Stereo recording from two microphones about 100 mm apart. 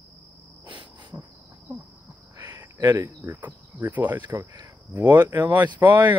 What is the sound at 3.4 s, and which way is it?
Speech, 20° right (ahead or behind).